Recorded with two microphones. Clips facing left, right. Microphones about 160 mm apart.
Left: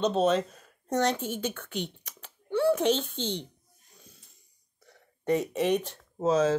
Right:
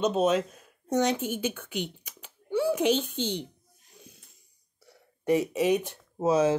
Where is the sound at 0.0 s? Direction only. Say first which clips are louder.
Even; 5° right (ahead or behind).